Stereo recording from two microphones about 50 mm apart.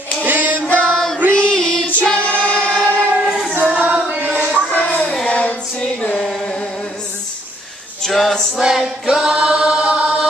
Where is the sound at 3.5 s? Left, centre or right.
Right.